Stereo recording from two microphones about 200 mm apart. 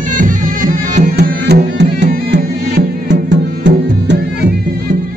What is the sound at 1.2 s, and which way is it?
Music, 55° right (ahead or behind).